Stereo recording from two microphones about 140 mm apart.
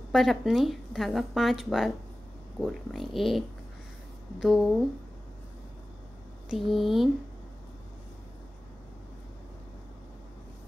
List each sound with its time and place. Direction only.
0.1 s a woman's voice: centre (ahead or behind)
6.5 s a woman's voice: centre (ahead or behind)